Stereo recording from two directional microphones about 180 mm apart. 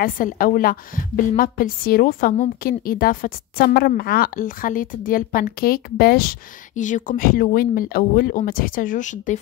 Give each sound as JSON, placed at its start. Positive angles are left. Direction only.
{"t": 0.0, "sound": "a woman's voice", "side_deg": 50}